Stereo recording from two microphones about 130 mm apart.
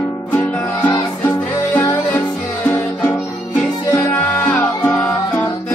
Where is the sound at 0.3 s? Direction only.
15° left (ahead or behind).